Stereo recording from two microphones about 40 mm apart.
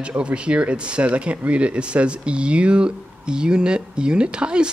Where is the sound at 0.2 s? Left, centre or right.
Right.